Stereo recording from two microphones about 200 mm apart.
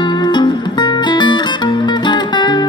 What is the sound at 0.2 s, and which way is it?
Music, 20° left (ahead or behind).